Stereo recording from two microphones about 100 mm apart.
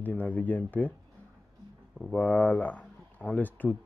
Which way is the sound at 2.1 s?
15° left (ahead or behind).